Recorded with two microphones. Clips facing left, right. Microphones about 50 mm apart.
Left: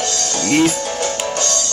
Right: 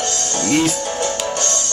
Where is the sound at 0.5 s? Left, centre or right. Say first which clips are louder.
Left 3 dB; left.